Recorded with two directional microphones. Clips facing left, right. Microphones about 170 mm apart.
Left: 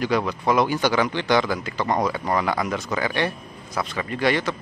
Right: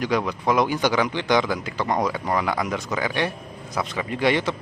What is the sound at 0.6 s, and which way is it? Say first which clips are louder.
Speech: even; 15° right (ahead or behind).